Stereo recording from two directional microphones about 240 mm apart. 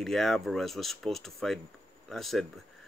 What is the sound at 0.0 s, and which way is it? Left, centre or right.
Speech, centre.